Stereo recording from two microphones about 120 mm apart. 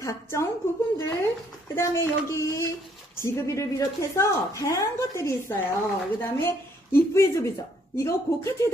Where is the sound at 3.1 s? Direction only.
25° left (ahead or behind).